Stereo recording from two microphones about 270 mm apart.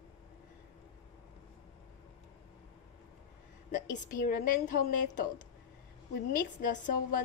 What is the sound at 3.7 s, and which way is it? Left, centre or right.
A woman's voice, left.